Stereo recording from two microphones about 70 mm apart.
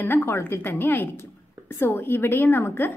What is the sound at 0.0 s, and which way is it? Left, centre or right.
A woman's voice, left.